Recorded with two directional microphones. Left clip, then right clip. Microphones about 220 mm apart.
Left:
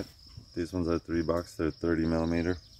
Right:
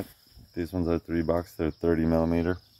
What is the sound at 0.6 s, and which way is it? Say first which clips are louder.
Speech: right 2 dB; 15° right (ahead or behind).